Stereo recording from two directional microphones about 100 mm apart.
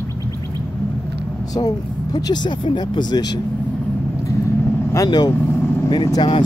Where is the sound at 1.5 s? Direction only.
40° left (ahead or behind).